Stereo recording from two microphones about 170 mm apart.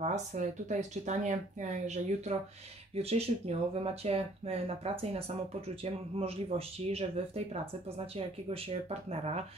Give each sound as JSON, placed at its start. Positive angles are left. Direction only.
{"t": 0.0, "sound": "speech", "side_deg": -45}
{"t": 8.5, "sound": "speech", "side_deg": -35}